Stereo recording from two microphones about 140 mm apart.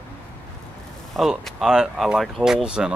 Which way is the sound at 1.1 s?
Centre (ahead or behind).